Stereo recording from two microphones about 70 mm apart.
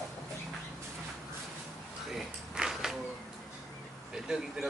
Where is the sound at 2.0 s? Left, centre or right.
Centre.